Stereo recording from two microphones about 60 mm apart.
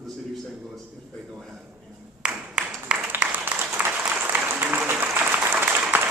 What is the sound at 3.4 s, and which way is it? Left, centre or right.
Applause, right.